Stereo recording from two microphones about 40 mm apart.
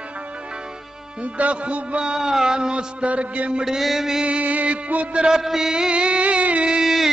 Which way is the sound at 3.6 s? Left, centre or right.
Centre.